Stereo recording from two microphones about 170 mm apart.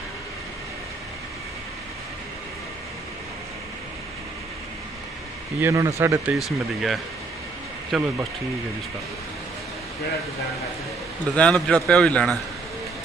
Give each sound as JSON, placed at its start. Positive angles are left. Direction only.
{"t": 5.6, "sound": "speech", "side_deg": -15}
{"t": 6.3, "sound": "speech", "side_deg": 0}
{"t": 11.3, "sound": "speech", "side_deg": 5}